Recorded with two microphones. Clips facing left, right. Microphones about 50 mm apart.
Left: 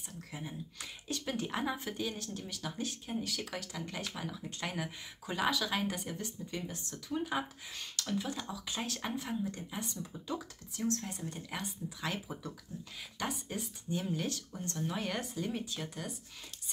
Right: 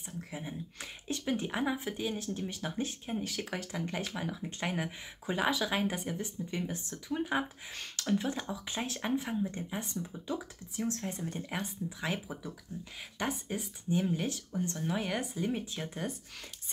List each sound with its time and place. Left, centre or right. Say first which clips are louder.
0.3 s speech: even; centre
13.2 s speech: right 3 dB; right